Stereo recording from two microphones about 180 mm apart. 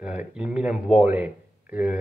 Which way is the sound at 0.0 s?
5° right (ahead or behind).